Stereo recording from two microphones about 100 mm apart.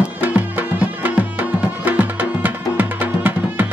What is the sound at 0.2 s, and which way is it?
Music, 20° right (ahead or behind).